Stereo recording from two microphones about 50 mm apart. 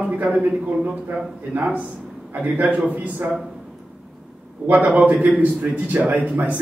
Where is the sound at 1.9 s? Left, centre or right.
Right.